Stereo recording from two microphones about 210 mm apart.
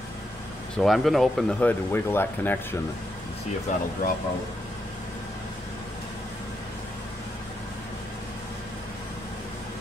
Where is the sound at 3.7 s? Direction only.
35° left (ahead or behind).